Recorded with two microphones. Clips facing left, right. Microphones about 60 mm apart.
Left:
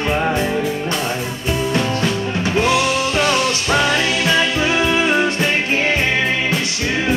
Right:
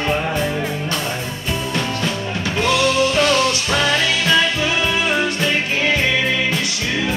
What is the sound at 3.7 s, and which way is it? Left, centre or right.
Music, left.